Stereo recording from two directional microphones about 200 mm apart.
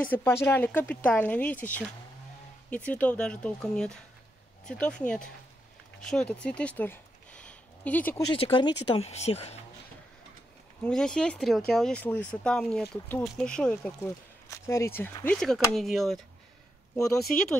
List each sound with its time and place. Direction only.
0.1 s speech: 15° left (ahead or behind)
8.3 s speech: 25° left (ahead or behind)
10.8 s speech: 5° left (ahead or behind)